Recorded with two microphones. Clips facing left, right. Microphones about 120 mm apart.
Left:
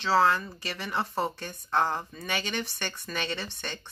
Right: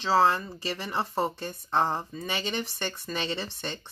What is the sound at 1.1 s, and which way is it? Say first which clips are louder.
Speech: right 2 dB; 20° right (ahead or behind).